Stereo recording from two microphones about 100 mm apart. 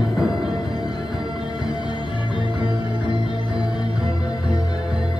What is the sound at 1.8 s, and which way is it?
Music, 50° left (ahead or behind).